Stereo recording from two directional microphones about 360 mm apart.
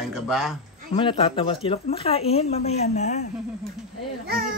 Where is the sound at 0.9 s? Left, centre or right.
Centre.